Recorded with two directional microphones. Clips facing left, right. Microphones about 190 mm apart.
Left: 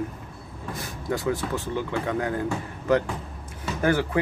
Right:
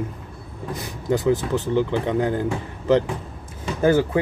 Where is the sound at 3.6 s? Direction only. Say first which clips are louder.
Right 5 dB; 25° right (ahead or behind).